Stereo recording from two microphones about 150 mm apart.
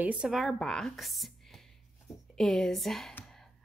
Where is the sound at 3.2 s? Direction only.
5° left (ahead or behind).